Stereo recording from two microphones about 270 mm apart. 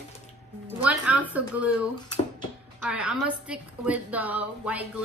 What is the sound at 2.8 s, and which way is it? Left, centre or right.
A woman's voice, centre.